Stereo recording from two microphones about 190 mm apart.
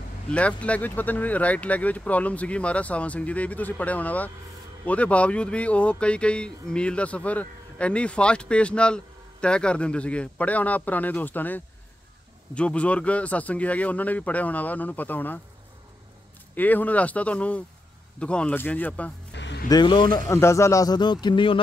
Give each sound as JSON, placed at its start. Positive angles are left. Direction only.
{"t": 0.3, "sound": "speech", "side_deg": 5}
{"t": 16.5, "sound": "speech", "side_deg": 10}
{"t": 19.3, "sound": "music", "side_deg": 70}
{"t": 19.7, "sound": "a man's voice", "side_deg": 25}